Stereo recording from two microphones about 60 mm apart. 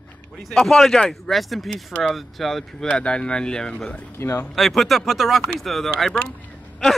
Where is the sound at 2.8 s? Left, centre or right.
Centre.